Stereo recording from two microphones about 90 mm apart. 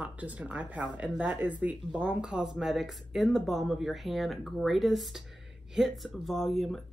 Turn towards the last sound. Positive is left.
turn(degrees=0)  # may be behind; listen again after turning